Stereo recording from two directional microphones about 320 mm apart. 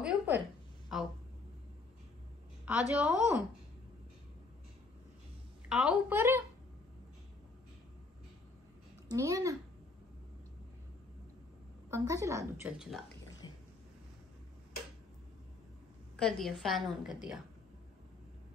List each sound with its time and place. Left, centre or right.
0.0 s a sound: centre
2.6 s a woman's voice: centre
5.7 s a woman's voice: centre
9.1 s a woman's voice: centre
11.9 s a woman's voice: centre
13.4 s a sound: centre
16.2 s a woman's voice: centre